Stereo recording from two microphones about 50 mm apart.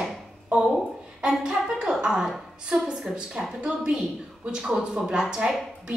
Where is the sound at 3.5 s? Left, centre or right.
Centre.